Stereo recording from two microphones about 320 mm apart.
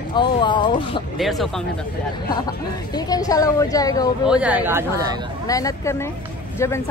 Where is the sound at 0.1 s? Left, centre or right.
Centre.